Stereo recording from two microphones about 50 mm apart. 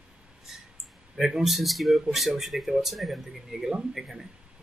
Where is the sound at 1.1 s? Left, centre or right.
Centre.